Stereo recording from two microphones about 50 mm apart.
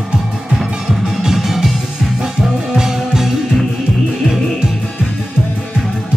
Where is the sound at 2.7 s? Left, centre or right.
Centre.